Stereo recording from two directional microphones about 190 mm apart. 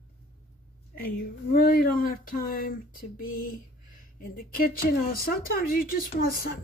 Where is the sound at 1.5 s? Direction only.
50° left (ahead or behind).